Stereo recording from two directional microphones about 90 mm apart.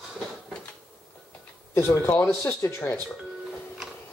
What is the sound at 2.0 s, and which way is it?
Speech, 30° left (ahead or behind).